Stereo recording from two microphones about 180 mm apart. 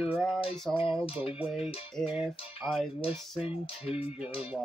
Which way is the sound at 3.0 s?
35° left (ahead or behind).